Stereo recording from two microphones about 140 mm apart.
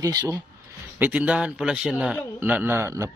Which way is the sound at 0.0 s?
25° right (ahead or behind).